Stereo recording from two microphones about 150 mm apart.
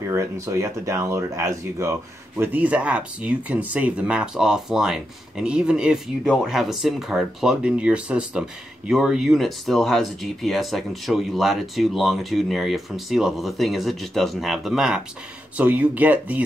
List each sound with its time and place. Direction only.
0.1 s speech: 20° right (ahead or behind)